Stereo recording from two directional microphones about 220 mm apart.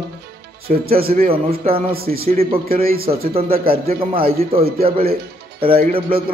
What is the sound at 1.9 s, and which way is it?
Speech, 45° right (ahead or behind).